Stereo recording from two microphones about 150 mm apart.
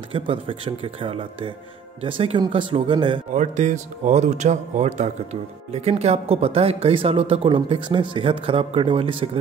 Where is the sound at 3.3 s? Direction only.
55° right (ahead or behind).